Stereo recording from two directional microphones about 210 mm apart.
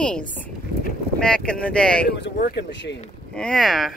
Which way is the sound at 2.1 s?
55° left (ahead or behind).